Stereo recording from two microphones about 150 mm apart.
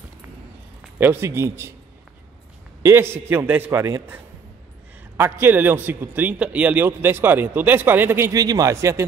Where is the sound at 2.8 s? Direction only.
15° right (ahead or behind).